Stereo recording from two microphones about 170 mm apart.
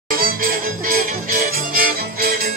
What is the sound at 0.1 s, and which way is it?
Music, 60° right (ahead or behind).